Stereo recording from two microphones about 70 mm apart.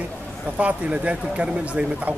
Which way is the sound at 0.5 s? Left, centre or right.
Centre.